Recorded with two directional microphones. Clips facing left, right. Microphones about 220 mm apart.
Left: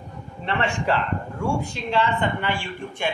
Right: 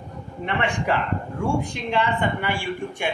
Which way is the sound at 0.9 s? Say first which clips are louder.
Even; 15° right (ahead or behind).